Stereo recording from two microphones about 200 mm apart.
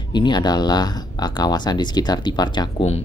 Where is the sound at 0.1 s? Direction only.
20° left (ahead or behind).